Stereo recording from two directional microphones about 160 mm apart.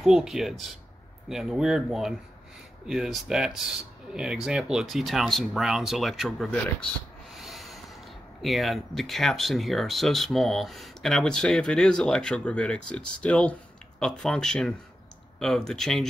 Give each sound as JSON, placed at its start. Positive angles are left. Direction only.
{"t": 0.0, "sound": "speech", "side_deg": 0}
{"t": 7.3, "sound": "rub", "side_deg": 0}
{"t": 8.4, "sound": "speech", "side_deg": 0}